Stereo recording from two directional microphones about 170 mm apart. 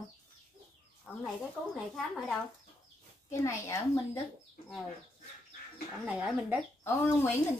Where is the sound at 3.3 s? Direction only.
15° left (ahead or behind).